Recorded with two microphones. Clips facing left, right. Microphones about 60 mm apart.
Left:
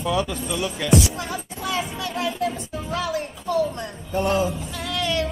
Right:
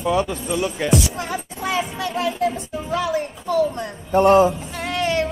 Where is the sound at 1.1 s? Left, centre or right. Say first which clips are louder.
Right 3 dB; right.